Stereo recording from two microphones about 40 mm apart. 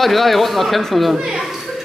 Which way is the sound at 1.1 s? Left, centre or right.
Centre.